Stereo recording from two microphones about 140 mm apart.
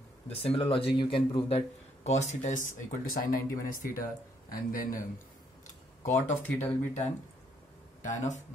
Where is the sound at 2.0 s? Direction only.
55° left (ahead or behind); by 4.8 s 85° left.